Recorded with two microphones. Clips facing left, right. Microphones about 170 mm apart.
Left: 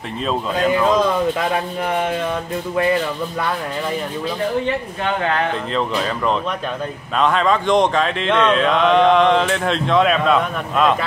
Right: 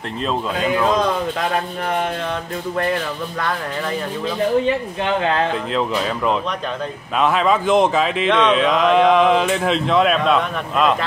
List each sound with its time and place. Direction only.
0.3 s speech: centre (ahead or behind)
5.7 s speech: 5° right (ahead or behind)